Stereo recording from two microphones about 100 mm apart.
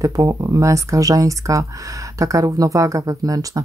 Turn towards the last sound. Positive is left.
turn(degrees=-35)  # may be behind; listen again after turning